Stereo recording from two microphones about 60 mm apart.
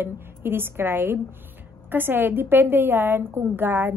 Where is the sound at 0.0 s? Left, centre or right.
Right.